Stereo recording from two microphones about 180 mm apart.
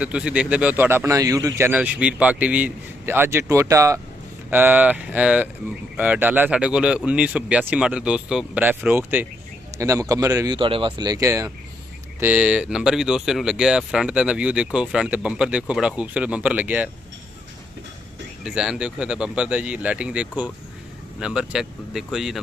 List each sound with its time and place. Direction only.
0.0 s speech: 5° right (ahead or behind)
1.7 s speech: 5° right (ahead or behind)
18.4 s speech: 5° right (ahead or behind)